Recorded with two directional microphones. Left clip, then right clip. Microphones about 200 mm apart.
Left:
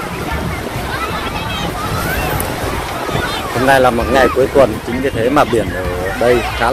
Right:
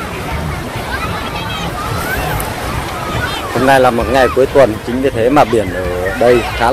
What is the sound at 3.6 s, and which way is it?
Speech, 10° right (ahead or behind).